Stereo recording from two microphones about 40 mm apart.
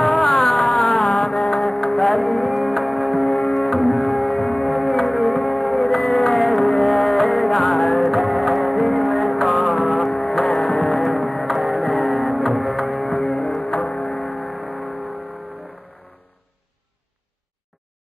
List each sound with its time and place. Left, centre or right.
0.6 s a sound: centre
0.9 s music: left
1.2 s music: centre
4.4 s a sound: centre
5.2 s music: centre
13.8 s music: centre
14.1 s a sound: left
14.5 s vehicle: right
14.8 s vehicle: left
15.1 s music: right